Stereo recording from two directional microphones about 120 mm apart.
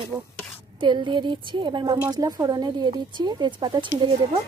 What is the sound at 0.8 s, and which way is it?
Speech, 40° right (ahead or behind).